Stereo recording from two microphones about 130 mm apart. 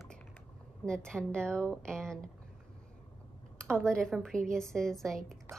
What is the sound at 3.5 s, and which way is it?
A woman's voice, 5° left (ahead or behind).